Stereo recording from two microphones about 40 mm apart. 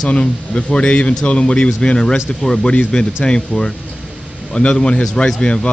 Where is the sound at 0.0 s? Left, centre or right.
Left.